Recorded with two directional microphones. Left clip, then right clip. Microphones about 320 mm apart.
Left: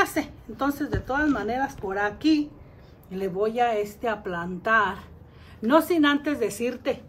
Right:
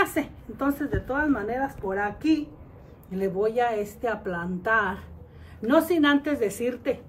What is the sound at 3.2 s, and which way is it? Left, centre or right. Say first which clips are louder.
A woman's voice: even; centre.